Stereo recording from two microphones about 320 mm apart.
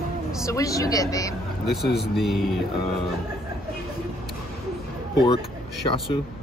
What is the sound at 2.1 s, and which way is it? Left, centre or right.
Speech, centre.